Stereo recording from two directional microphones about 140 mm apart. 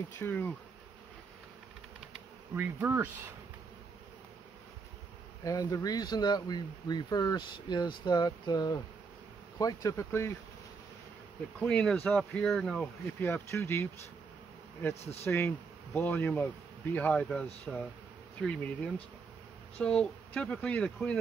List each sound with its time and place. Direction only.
0.2 s speech: 15° left (ahead or behind)
2.5 s speech: 15° right (ahead or behind)
5.4 s speech: 25° left (ahead or behind)
11.6 s speech: 10° left (ahead or behind)
15.2 s speech: 15° left (ahead or behind)